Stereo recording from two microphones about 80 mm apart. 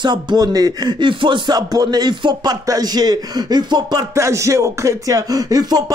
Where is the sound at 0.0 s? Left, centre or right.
Right.